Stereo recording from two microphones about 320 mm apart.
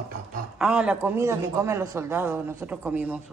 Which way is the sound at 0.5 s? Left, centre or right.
Centre.